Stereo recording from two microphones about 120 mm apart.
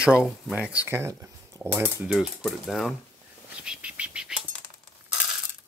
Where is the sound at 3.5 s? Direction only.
10° right (ahead or behind).